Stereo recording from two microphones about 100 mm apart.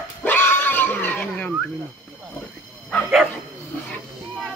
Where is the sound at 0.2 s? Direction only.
20° left (ahead or behind).